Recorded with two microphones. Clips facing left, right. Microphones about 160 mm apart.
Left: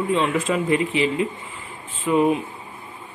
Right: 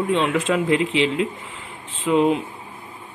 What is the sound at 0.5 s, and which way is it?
Speech, 90° right.